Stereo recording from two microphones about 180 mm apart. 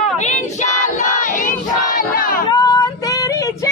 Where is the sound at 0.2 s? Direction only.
40° left (ahead or behind).